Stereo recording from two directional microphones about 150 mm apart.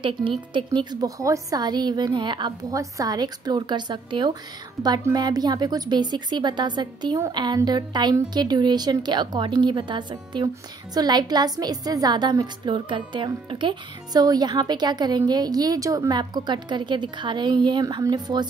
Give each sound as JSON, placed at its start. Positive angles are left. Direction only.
{"t": 0.5, "sound": "a woman's voice", "side_deg": -30}